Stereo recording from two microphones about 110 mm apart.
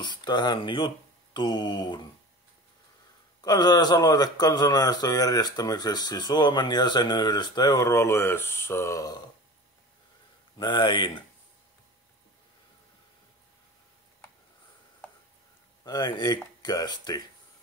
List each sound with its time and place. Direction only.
0.0 s speech: 40° left (ahead or behind)
3.3 s a man's voice: 35° left (ahead or behind)
10.6 s speech: 45° left (ahead or behind)
15.8 s a man's voice: 40° left (ahead or behind)